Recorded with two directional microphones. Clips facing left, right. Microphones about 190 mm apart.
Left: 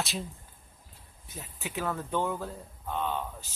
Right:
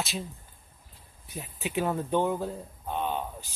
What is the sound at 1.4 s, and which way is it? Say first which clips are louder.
Speech: right 5 dB; 20° right (ahead or behind).